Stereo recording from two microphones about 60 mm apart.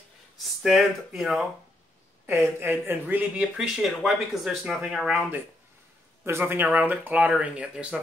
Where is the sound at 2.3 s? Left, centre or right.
Right.